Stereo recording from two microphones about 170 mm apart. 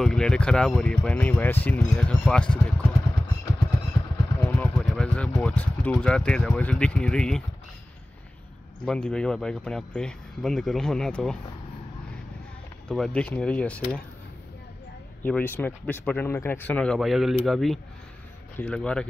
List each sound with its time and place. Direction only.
0.0 s speech: 5° left (ahead or behind)
4.4 s vehicle: 10° left (ahead or behind)
5.4 s speech: 10° left (ahead or behind)
8.8 s speech: 5° left (ahead or behind)
12.8 s speech: 5° left (ahead or behind)
15.2 s speech: 10° left (ahead or behind)